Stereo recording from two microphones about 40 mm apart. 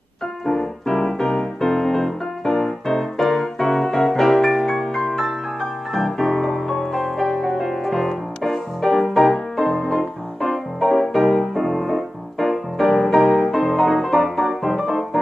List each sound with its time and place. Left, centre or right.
0.5 s music: centre